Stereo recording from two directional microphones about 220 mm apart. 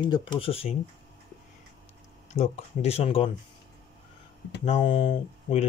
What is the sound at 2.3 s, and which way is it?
Speech, 30° left (ahead or behind).